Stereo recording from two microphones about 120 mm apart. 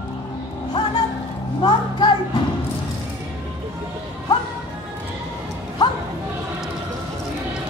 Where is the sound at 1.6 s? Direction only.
40° left (ahead or behind).